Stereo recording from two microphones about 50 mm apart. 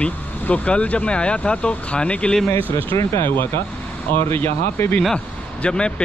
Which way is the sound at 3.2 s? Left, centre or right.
Left.